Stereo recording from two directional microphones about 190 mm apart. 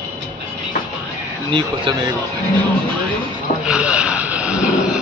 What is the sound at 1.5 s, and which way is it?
Speech, 25° right (ahead or behind).